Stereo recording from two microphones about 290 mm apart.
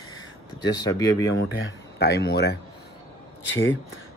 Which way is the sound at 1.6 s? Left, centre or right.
Left.